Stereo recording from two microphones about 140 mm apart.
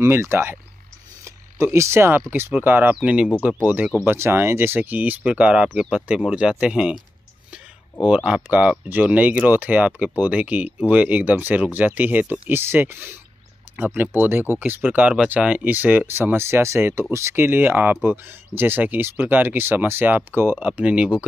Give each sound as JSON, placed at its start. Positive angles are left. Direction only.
{"t": 0.0, "sound": "speech", "side_deg": -15}
{"t": 8.0, "sound": "speech", "side_deg": -10}